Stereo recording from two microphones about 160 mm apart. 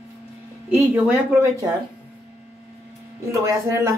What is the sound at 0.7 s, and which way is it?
Speech, 20° right (ahead or behind).